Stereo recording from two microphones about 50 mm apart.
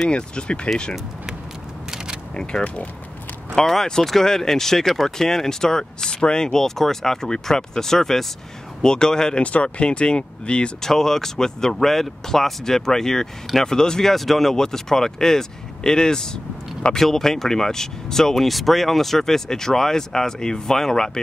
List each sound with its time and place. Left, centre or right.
0.1 s speech: left
2.6 s speech: left
3.5 s speech: centre
9.4 s speech: left
10.8 s speech: centre